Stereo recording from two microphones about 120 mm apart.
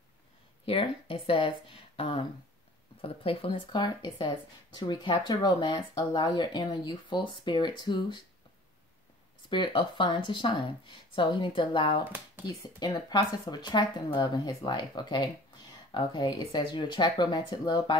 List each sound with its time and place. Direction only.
0.7 s speech: 50° left (ahead or behind)
9.5 s speech: 40° left (ahead or behind)
12.0 s speech: 15° right (ahead or behind)
12.4 s speech: 35° left (ahead or behind)